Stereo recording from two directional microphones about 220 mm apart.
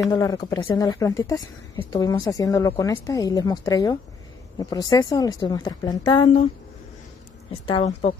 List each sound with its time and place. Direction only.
0.1 s a woman's voice: 15° left (ahead or behind)
7.6 s speech: 25° left (ahead or behind)